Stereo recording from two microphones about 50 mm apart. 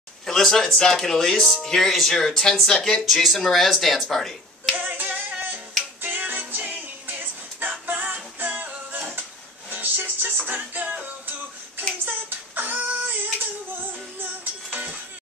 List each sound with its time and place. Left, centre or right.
0.3 s speech: centre
4.7 s music: right
12.0 s child singing: right
14.2 s music: right